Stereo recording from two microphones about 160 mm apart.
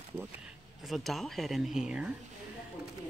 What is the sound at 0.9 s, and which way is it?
Speech, centre (ahead or behind).